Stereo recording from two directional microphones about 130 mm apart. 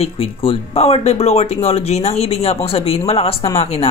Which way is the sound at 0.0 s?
45° left (ahead or behind).